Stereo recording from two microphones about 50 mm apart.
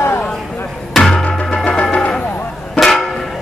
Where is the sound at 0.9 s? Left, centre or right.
Centre.